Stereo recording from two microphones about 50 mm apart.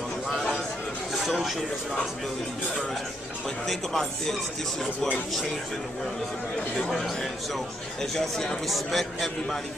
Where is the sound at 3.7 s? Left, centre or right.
Centre.